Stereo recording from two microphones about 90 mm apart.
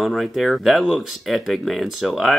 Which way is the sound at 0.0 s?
Centre (ahead or behind).